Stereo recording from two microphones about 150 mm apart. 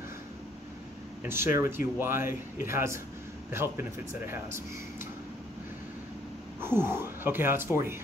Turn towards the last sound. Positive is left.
turn(degrees=-15)  # may be behind; listen again after turning